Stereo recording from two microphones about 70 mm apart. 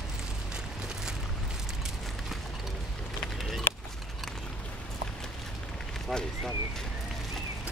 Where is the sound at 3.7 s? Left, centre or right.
Left.